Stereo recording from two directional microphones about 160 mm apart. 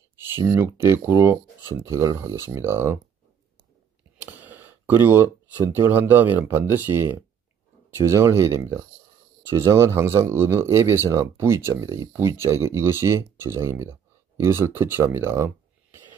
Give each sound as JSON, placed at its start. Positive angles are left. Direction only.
{"t": 0.4, "sound": "speech", "side_deg": -15}
{"t": 4.2, "sound": "a sound", "side_deg": -10}
{"t": 5.7, "sound": "speech", "side_deg": -15}